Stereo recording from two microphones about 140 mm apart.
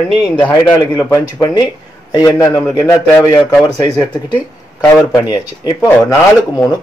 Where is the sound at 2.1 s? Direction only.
25° left (ahead or behind).